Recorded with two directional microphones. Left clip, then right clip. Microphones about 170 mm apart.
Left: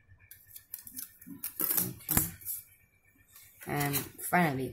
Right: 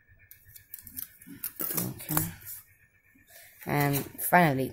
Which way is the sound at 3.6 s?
50° right (ahead or behind).